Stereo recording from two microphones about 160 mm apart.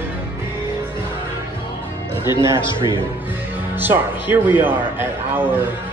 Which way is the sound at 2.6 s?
30° left (ahead or behind).